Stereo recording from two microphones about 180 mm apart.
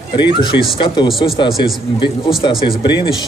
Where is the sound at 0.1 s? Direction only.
25° left (ahead or behind).